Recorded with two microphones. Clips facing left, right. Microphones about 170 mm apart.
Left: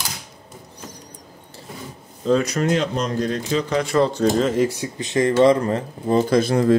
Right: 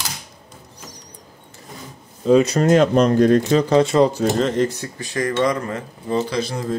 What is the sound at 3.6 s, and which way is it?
Speech, 25° right (ahead or behind).